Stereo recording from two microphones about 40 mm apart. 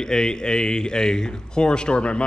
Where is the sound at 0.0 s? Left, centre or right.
Centre.